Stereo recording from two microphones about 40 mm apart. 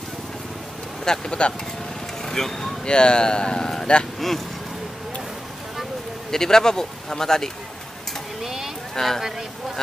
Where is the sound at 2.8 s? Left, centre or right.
Left.